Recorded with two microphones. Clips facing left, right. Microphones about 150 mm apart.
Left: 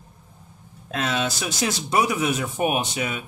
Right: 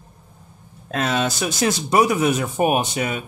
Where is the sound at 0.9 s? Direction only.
45° right (ahead or behind).